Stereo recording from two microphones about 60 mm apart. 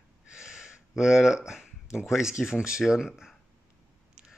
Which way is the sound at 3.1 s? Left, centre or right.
Centre.